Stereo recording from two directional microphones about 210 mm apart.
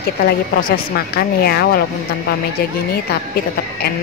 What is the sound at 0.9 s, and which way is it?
Speech, 45° left (ahead or behind).